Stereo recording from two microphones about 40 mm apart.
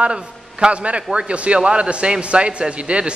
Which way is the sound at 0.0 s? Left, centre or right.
Right.